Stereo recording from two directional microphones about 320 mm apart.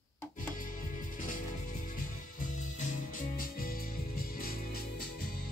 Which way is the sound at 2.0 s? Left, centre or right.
Left.